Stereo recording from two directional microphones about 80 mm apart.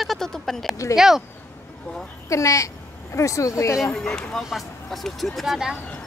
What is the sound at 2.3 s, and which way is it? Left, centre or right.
Speech, left.